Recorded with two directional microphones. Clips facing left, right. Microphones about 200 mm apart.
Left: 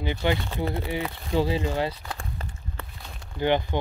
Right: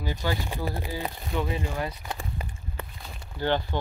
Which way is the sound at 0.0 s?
20° left (ahead or behind).